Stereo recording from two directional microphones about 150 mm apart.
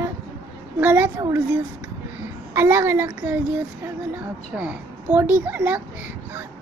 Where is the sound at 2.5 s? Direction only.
15° right (ahead or behind).